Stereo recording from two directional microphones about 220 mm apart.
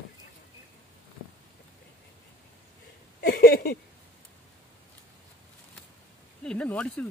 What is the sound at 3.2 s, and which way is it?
Speech, 40° left (ahead or behind).